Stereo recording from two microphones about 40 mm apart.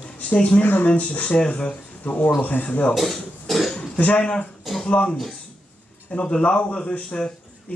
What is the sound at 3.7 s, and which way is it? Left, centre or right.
Speech, left.